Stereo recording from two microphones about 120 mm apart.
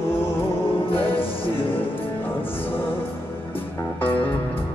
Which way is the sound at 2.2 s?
15° left (ahead or behind).